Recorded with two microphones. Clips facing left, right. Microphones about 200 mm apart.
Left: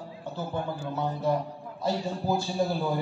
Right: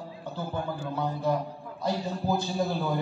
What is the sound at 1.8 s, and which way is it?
A man's voice, 10° left (ahead or behind).